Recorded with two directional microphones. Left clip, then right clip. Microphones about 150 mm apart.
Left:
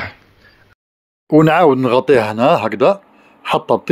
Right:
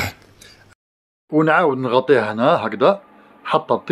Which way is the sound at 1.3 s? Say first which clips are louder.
Left 5 dB; 70° left (ahead or behind).